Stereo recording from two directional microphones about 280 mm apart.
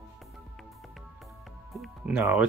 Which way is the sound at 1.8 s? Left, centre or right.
Centre.